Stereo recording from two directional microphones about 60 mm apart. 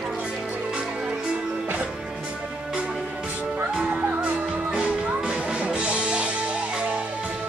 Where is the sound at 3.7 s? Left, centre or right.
Centre.